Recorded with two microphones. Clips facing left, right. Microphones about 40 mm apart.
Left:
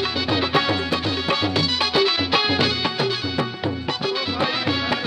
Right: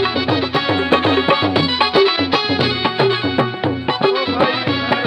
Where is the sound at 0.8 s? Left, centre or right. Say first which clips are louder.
Right 9 dB; right.